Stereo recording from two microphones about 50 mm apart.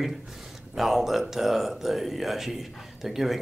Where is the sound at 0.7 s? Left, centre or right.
Centre.